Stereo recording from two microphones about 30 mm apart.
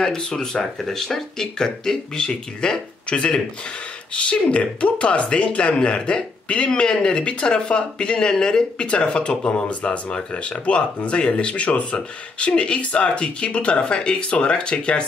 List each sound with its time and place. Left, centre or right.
0.0 s speech: centre